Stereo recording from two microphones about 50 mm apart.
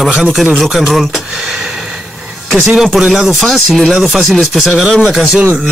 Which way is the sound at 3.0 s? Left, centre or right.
Centre.